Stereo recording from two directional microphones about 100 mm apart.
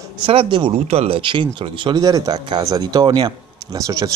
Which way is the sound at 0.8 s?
85° right.